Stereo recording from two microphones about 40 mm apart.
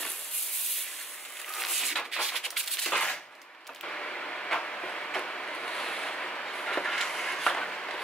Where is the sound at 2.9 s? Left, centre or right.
Centre.